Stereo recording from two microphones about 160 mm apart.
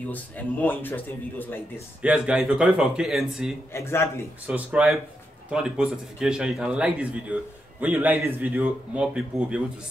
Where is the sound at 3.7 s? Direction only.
15° left (ahead or behind).